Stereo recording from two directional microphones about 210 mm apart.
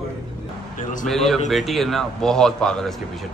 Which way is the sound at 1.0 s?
Centre (ahead or behind).